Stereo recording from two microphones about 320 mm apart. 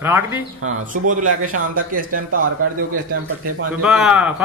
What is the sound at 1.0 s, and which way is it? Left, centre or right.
A man's voice, right.